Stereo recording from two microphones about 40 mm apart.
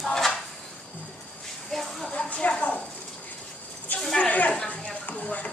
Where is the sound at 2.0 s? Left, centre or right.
Left.